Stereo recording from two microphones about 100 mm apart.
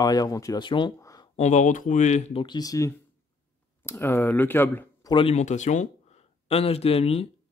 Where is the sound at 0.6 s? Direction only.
55° left (ahead or behind).